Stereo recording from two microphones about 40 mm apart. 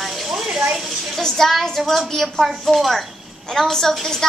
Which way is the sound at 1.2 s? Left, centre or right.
Centre.